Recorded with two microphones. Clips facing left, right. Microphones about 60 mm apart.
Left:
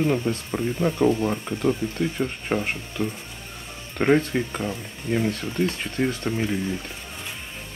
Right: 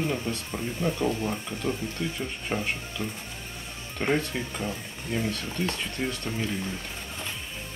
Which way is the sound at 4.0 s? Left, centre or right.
Left.